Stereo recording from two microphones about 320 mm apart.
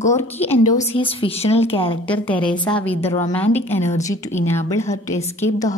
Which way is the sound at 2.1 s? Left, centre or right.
Centre.